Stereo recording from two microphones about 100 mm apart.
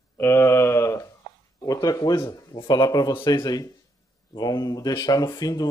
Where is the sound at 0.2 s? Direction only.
25° left (ahead or behind).